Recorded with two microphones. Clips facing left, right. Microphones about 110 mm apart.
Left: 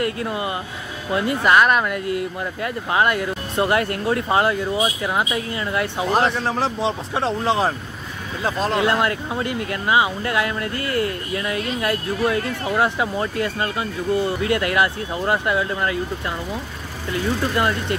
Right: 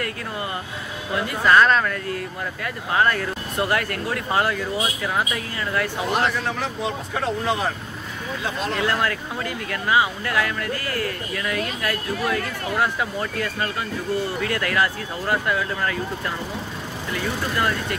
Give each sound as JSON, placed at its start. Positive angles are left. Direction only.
{"t": 0.0, "sound": "speech", "side_deg": 20}
{"t": 8.8, "sound": "speech", "side_deg": 20}
{"t": 17.6, "sound": "speech", "side_deg": 25}